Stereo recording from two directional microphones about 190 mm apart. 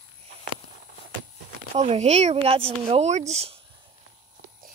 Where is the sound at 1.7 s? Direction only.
35° right (ahead or behind).